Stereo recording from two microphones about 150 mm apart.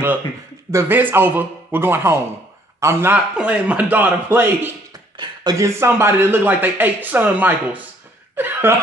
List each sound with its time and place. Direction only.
0.7 s speech: 15° right (ahead or behind)
5.1 s a sound: 30° right (ahead or behind)
5.8 s speech: 15° right (ahead or behind)
8.4 s chuckle: 15° right (ahead or behind)